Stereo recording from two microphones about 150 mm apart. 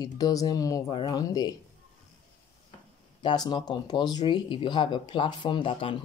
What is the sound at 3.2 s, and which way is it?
Speech, 30° left (ahead or behind).